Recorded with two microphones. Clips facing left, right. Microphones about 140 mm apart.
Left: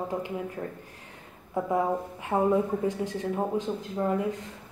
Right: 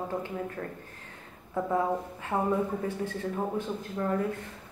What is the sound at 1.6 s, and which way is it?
Speech, 15° left (ahead or behind).